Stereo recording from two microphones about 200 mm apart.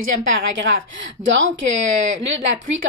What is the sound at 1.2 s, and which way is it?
Speech, 70° right (ahead or behind).